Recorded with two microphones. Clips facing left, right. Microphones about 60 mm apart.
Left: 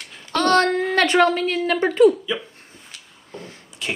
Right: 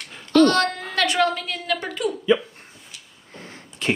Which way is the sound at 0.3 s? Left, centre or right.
Left.